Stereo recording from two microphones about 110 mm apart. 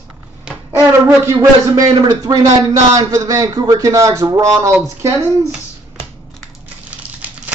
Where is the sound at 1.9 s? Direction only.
35° right (ahead or behind).